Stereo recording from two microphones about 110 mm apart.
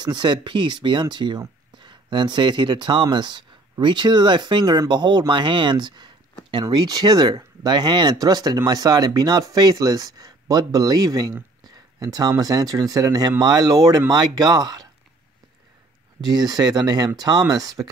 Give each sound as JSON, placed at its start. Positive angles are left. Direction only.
{"t": 0.0, "sound": "speech", "side_deg": -45}
{"t": 16.2, "sound": "speech", "side_deg": -40}